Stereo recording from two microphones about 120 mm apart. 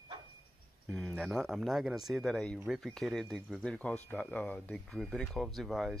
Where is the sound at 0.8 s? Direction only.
5° left (ahead or behind).